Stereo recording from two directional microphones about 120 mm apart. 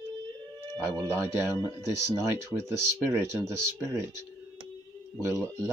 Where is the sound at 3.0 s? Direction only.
20° right (ahead or behind).